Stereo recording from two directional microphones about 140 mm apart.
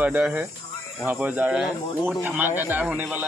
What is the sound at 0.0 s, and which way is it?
Speech, 10° right (ahead or behind).